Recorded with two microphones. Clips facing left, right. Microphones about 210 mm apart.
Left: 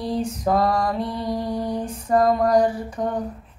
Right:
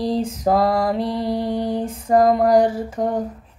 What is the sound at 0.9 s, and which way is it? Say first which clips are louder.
Mantra: right 4 dB; 90° right.